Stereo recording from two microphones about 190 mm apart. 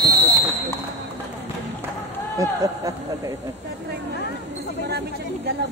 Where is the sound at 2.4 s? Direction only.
15° right (ahead or behind).